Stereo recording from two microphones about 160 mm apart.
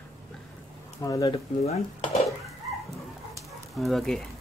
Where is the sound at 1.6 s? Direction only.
40° left (ahead or behind).